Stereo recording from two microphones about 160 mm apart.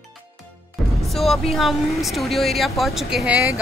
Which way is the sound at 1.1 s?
Centre (ahead or behind).